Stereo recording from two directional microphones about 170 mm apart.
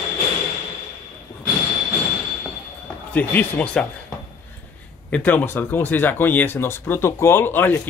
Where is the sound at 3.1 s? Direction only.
10° left (ahead or behind).